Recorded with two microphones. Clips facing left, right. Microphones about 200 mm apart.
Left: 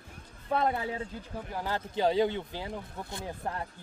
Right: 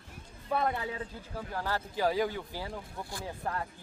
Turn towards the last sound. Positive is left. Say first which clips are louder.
# even
turn(degrees=20)  # may be behind; listen again after turning